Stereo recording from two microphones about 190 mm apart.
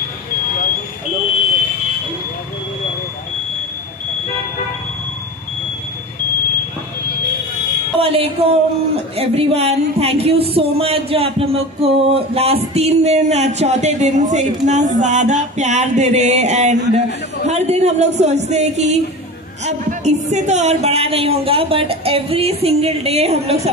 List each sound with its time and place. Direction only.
8.0 s a man's voice: 30° right (ahead or behind)